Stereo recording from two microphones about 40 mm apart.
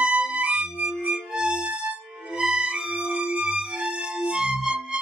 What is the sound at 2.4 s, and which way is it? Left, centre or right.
Music, right.